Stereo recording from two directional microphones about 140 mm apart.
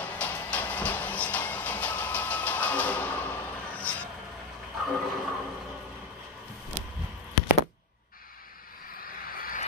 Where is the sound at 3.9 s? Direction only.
10° left (ahead or behind).